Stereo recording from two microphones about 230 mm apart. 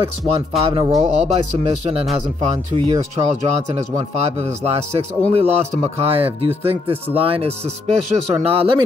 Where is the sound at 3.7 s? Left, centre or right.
Right.